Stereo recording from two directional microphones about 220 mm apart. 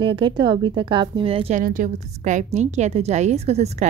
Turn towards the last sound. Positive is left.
turn(degrees=-30)  # may be behind; listen again after turning